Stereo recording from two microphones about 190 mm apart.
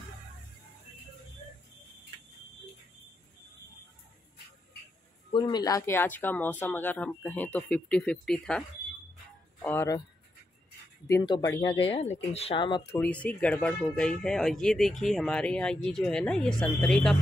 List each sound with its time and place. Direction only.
5.3 s speech: 20° left (ahead or behind); by 8.6 s 5° left (ahead or behind)
9.6 s speech: 15° left (ahead or behind)
11.1 s speech: 20° left (ahead or behind)
12.9 s speech: 5° left (ahead or behind)